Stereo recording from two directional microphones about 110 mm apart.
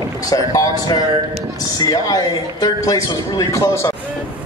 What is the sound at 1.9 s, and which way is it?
A man's voice, 35° left (ahead or behind).